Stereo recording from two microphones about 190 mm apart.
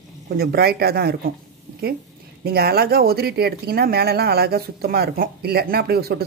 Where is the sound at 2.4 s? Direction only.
55° right (ahead or behind).